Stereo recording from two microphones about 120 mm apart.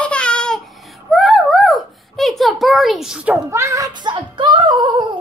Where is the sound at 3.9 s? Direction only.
40° right (ahead or behind).